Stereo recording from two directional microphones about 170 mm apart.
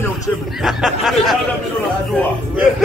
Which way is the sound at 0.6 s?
Centre (ahead or behind).